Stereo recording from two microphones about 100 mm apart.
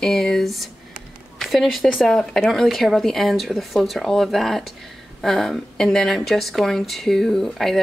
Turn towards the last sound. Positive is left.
turn(degrees=5)  # may be behind; listen again after turning